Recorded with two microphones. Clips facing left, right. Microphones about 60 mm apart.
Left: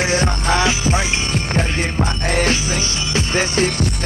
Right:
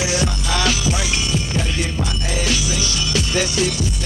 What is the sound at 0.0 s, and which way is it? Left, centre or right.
Music, left.